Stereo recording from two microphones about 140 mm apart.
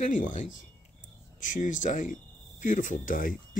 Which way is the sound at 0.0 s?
65° left (ahead or behind).